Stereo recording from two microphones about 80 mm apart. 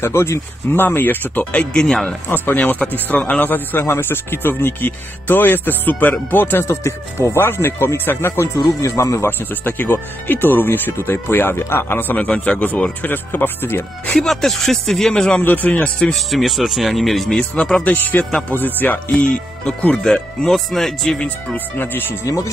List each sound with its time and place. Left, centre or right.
0.0 s speech: left; by 2.0 s centre
2.0 s speech: left
8.5 s speech: left
9.5 s speech: left
13.0 s speech: left
14.1 s speech: centre; by 15.9 s left
16.0 s speech: centre
17.8 s speech: left
20.0 s speech: centre
21.7 s speech: left
22.2 s speech: left